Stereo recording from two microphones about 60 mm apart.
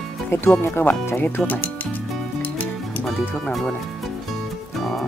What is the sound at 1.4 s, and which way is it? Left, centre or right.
Speech, left.